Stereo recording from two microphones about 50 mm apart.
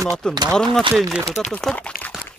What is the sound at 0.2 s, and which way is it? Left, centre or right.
Speech, centre.